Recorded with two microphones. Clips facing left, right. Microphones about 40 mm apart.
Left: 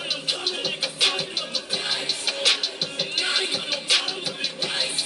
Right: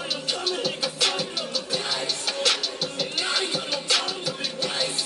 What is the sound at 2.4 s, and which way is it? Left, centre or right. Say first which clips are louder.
Music: left 1 dB; left.